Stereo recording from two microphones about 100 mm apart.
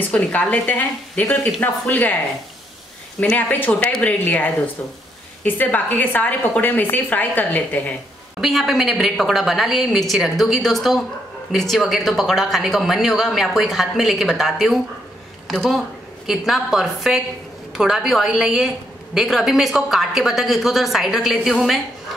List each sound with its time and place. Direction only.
0.1 s a woman's voice: 15° left (ahead or behind)
3.2 s a woman's voice: 15° left (ahead or behind)
8.4 s speech: centre (ahead or behind)